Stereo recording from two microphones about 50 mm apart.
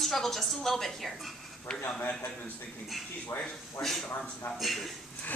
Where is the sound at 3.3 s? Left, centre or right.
Left.